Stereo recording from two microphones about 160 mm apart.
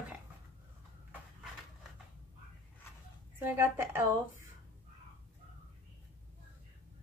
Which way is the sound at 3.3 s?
15° right (ahead or behind).